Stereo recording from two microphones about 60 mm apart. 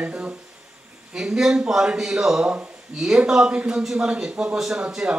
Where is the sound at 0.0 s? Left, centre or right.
Right.